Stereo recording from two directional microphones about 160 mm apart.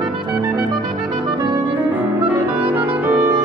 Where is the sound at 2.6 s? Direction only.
10° right (ahead or behind).